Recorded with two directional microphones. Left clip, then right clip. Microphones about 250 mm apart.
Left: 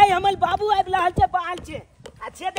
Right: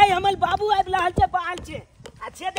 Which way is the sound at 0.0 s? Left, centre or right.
Centre.